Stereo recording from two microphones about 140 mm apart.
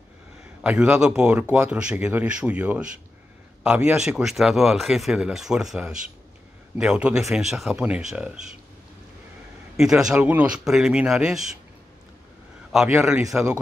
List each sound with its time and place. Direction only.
0.7 s speech: 10° right (ahead or behind)
9.8 s speech: 5° right (ahead or behind)
12.7 s speech: 5° right (ahead or behind)